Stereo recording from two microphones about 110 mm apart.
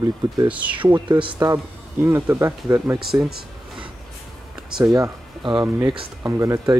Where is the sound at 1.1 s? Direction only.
50° right (ahead or behind).